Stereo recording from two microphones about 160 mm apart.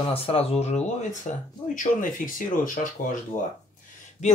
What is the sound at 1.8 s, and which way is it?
Speech, 55° left (ahead or behind).